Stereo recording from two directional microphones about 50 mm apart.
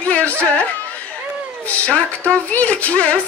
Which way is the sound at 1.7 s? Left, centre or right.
Left.